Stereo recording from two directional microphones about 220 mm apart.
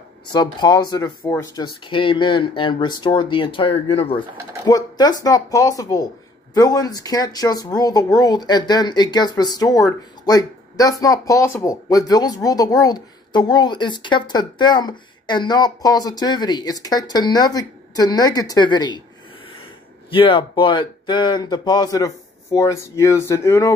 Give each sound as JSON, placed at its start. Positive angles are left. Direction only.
{"t": 0.3, "sound": "speech", "side_deg": 20}
{"t": 20.1, "sound": "speech", "side_deg": 25}